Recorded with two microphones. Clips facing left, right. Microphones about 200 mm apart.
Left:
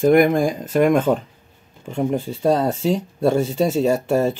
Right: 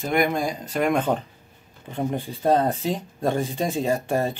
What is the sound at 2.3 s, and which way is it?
Speech, 85° left.